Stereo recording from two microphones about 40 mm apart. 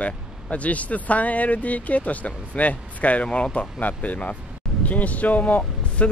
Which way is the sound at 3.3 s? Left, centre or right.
Left.